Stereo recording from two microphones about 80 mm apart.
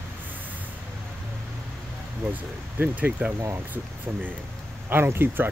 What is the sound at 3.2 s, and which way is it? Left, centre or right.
Speech, centre.